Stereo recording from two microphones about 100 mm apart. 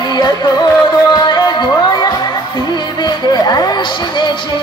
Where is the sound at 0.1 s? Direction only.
45° left (ahead or behind).